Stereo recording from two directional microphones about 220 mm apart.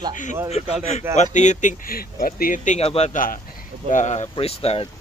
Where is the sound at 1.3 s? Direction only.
35° left (ahead or behind).